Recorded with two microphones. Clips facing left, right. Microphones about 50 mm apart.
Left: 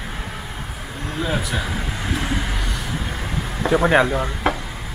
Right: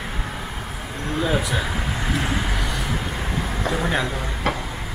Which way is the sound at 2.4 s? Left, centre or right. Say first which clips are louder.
Right 1 dB; centre.